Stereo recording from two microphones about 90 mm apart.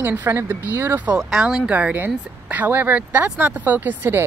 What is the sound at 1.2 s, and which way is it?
Speech, 10° right (ahead or behind).